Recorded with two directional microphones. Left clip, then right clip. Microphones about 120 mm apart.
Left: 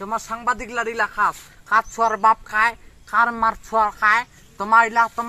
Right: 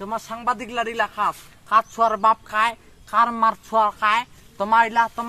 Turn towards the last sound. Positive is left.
turn(degrees=-20)  # may be behind; listen again after turning